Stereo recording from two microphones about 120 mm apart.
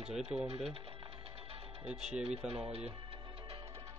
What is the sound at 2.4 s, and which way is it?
Speech, 55° right (ahead or behind).